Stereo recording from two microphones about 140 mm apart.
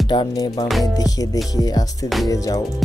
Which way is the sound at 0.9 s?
25° left (ahead or behind).